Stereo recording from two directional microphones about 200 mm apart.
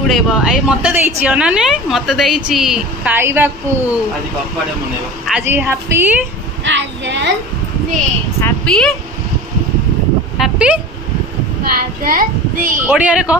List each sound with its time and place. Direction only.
0.1 s a woman's voice: 5° right (ahead or behind)
5.3 s a woman's voice: 10° right (ahead or behind)
6.6 s child singing: 60° right (ahead or behind)
8.4 s a woman's voice: 5° left (ahead or behind)
10.3 s speech: 5° right (ahead or behind)
11.6 s child singing: 45° right (ahead or behind)
12.8 s a woman's voice: 5° right (ahead or behind)